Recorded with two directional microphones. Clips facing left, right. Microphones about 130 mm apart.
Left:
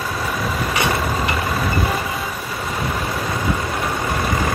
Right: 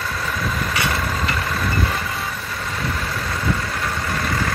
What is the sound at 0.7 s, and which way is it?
Vehicle, 20° left (ahead or behind).